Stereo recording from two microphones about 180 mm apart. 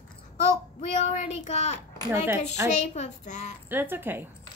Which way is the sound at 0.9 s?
45° left (ahead or behind).